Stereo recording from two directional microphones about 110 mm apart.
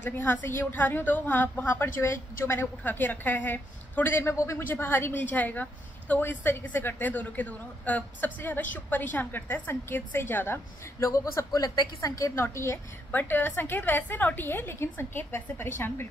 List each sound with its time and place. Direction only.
0.0 s a woman's voice: 20° left (ahead or behind)